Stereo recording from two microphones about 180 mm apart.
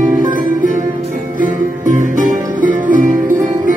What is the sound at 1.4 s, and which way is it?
Music, 45° right (ahead or behind).